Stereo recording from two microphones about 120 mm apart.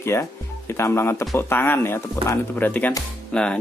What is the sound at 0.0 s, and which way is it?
Speech, 20° left (ahead or behind).